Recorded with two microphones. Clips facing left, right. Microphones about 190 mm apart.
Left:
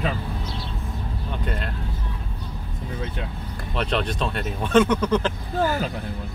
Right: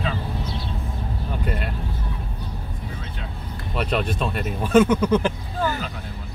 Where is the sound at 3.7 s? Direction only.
5° right (ahead or behind).